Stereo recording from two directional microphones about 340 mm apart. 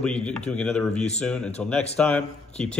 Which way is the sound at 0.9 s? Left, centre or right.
Centre.